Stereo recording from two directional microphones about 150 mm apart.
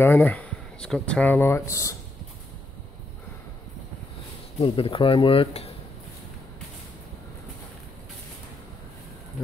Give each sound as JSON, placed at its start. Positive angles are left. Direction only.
{"t": 0.0, "sound": "speech", "side_deg": 10}
{"t": 4.6, "sound": "speech", "side_deg": 40}